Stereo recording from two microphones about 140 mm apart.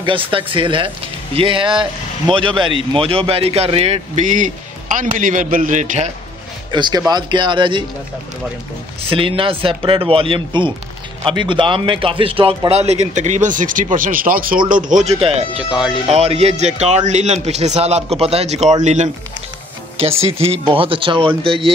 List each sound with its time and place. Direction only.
0.0 s a man's voice: 40° right (ahead or behind); by 6.1 s 55° right (ahead or behind)
6.7 s speech: 30° right (ahead or behind)
9.0 s a man's voice: 40° right (ahead or behind); by 14.6 s 85° right
14.7 s a man's voice: 70° right (ahead or behind); by 15.6 s 45° right (ahead or behind)
15.7 s speech: 5° right (ahead or behind)
16.1 s a man's voice: 50° right (ahead or behind)
20.0 s speech: 45° right (ahead or behind)